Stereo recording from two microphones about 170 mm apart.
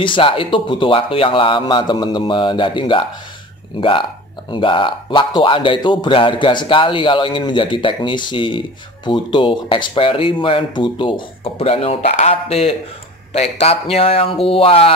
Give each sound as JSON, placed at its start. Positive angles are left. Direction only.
{"t": 0.0, "sound": "speech", "side_deg": 30}